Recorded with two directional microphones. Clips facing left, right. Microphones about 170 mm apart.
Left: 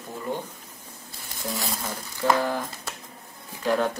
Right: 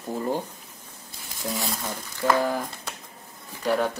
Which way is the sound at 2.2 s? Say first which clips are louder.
Even; 15° right (ahead or behind).